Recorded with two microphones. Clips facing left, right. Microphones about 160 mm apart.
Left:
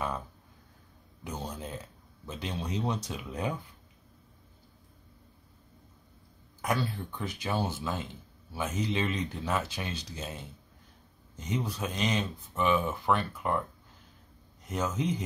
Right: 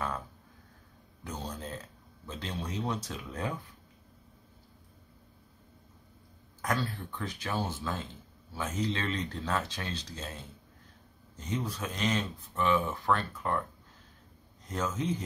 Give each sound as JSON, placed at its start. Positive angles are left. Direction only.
{"t": 1.2, "sound": "a sound", "side_deg": 10}
{"t": 2.2, "sound": "speech", "side_deg": 15}
{"t": 6.6, "sound": "speech", "side_deg": 15}
{"t": 14.7, "sound": "speech", "side_deg": 15}